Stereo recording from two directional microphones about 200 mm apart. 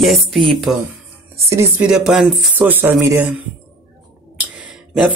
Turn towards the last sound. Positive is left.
turn(degrees=0)  # may be behind; listen again after turning